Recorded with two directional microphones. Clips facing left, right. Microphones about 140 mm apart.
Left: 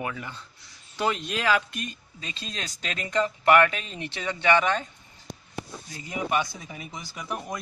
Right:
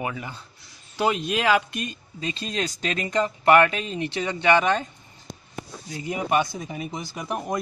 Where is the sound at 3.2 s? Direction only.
40° right (ahead or behind).